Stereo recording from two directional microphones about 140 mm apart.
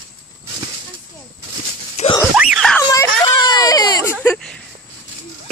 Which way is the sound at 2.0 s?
50° left (ahead or behind).